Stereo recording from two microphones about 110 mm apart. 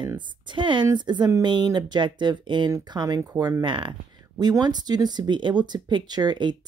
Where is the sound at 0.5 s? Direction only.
45° right (ahead or behind).